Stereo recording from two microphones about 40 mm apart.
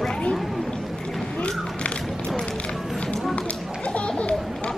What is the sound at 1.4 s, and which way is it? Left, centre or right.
Music, left.